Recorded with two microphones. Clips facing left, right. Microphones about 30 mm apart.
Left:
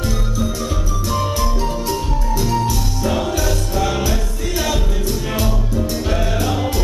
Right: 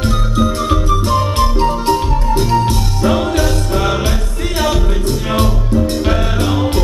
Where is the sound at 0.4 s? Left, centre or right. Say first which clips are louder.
Right 10 dB; right.